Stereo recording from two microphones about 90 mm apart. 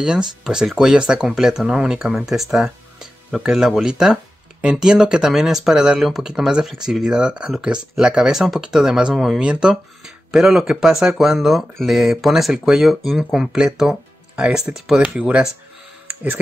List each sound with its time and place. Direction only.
0.4 s speech: 5° right (ahead or behind)
15.1 s speech: 15° right (ahead or behind)